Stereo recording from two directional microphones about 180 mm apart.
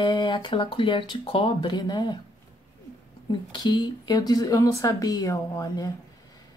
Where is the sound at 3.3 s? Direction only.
25° left (ahead or behind).